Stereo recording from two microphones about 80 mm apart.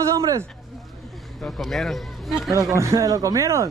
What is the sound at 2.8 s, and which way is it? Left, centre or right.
Speech, right.